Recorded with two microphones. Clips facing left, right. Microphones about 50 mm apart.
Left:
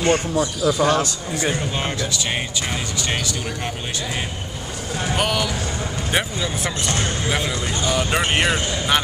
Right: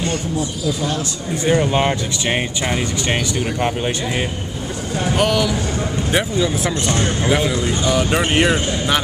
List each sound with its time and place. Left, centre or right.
0.0 s speech: left
1.5 s speech: right
5.1 s speech: centre
6.9 s speech: centre